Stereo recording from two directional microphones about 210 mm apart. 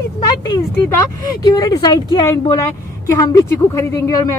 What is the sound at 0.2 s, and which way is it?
A woman's voice, 15° left (ahead or behind).